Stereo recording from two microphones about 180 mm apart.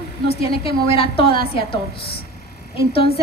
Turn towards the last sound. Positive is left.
turn(degrees=30)  # may be behind; listen again after turning